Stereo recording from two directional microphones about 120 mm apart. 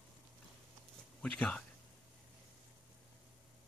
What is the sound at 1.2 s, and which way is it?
Speech, 10° left (ahead or behind).